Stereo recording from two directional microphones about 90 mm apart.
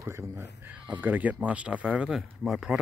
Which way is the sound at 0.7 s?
20° right (ahead or behind).